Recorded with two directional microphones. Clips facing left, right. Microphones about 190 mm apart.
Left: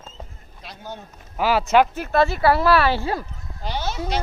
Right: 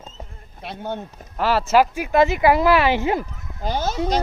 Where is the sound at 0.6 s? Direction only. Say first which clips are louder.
Right 7 dB; 60° right (ahead or behind).